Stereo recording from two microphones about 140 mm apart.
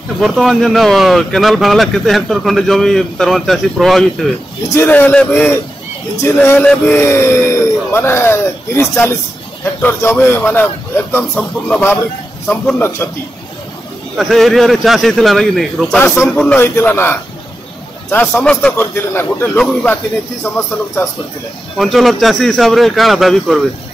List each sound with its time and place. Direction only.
0.2 s speech: centre (ahead or behind)
4.7 s speech: 15° left (ahead or behind)
14.1 s speech: centre (ahead or behind)
16.5 s speech: 15° left (ahead or behind)
21.7 s speech: centre (ahead or behind)